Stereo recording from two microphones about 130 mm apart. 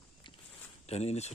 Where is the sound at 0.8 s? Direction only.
55° left (ahead or behind).